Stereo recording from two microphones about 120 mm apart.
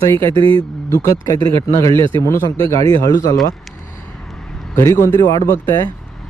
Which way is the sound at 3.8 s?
25° left (ahead or behind).